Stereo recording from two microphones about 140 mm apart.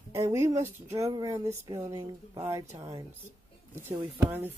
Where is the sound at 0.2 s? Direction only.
20° right (ahead or behind).